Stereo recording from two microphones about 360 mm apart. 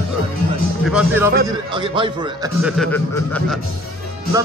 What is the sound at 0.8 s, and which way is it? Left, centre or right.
A man's voice, centre.